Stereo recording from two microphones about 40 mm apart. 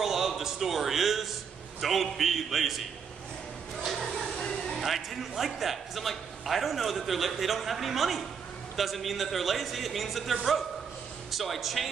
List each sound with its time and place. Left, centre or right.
0.0 s a man's voice: centre
3.8 s a sound: centre
4.7 s a man's voice: centre
11.3 s a man's voice: centre